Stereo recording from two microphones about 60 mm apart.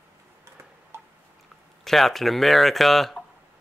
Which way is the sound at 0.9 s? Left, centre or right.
Right.